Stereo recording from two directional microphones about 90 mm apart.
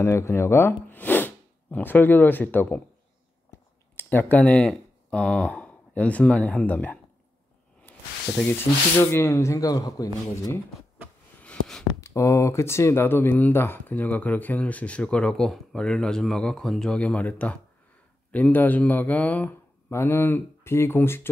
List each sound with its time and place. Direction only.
0.0 s speech: 30° left (ahead or behind)
9.1 s speech: 30° left (ahead or behind)
11.4 s a sound: 5° left (ahead or behind)
12.0 s speech: 35° left (ahead or behind); by 19.5 s 15° left (ahead or behind)
19.9 s speech: 30° left (ahead or behind)